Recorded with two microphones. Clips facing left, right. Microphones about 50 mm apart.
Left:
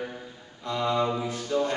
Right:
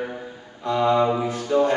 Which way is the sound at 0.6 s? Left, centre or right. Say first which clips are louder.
Right 7 dB; centre.